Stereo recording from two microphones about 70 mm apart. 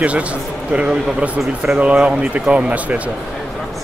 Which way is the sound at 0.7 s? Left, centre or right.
Centre.